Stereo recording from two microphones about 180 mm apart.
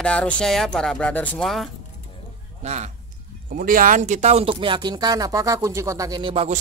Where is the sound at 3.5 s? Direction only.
50° right (ahead or behind).